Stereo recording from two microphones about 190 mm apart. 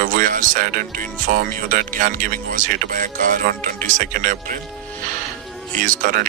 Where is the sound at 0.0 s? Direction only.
45° right (ahead or behind).